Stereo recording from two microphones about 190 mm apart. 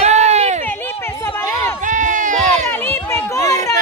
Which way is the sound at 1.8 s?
40° right (ahead or behind).